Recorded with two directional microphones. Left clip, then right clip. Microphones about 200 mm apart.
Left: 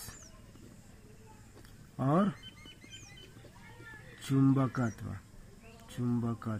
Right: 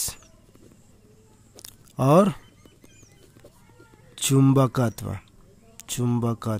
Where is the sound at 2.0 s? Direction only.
70° right (ahead or behind).